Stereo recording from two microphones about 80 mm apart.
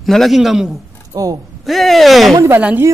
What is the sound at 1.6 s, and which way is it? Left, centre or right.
Speech, centre.